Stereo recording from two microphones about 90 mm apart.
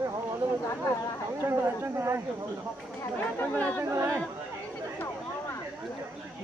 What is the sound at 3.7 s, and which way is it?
Speech, 30° right (ahead or behind).